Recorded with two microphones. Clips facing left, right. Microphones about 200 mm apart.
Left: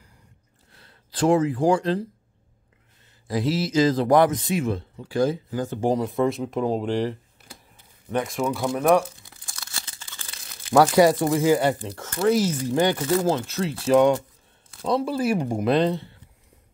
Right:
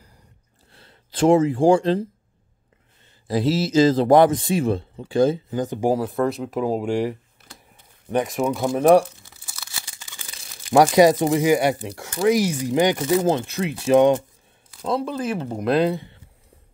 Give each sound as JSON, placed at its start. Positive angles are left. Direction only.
{"t": 0.7, "sound": "speech", "side_deg": -25}
{"t": 3.3, "sound": "speech", "side_deg": -30}
{"t": 9.3, "sound": "tearing", "side_deg": -5}
{"t": 10.7, "sound": "speech", "side_deg": -15}
{"t": 14.7, "sound": "speech", "side_deg": 0}
{"t": 15.6, "sound": "speech", "side_deg": -5}